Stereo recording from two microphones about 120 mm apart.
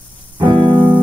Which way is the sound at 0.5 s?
40° right (ahead or behind).